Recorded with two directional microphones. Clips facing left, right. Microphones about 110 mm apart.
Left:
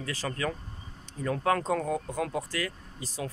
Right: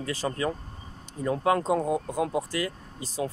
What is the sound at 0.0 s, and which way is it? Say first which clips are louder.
Speech: right 4 dB; 20° right (ahead or behind).